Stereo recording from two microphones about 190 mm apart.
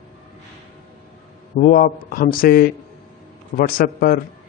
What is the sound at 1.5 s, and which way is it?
A man's voice, 45° left (ahead or behind).